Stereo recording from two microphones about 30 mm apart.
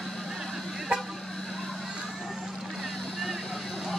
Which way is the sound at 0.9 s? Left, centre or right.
Right.